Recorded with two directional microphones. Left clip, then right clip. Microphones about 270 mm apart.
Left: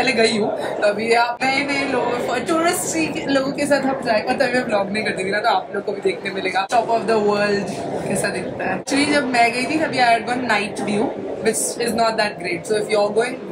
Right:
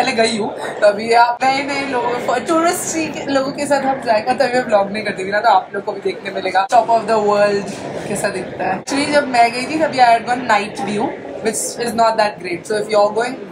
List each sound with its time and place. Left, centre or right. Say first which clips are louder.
0.0 s a woman's voice: right 1 dB; centre